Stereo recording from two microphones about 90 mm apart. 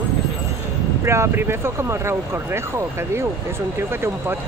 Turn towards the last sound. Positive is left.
turn(degrees=-25)  # may be behind; listen again after turning